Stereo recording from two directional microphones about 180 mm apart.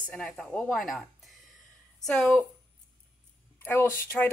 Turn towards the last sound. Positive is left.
turn(degrees=10)  # may be behind; listen again after turning